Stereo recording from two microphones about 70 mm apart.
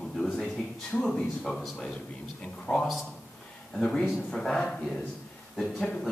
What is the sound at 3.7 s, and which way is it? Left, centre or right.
A man's voice, centre.